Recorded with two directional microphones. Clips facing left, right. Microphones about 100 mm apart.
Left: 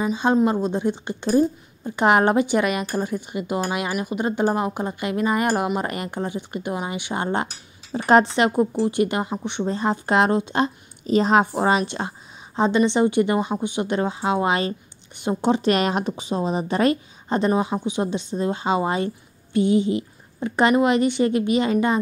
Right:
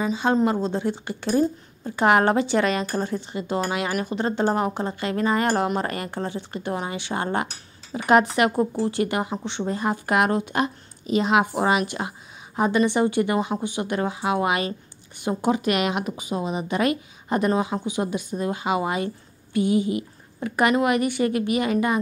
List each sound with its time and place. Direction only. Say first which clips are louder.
0.0 s speech: left 2 dB; 15° left (ahead or behind)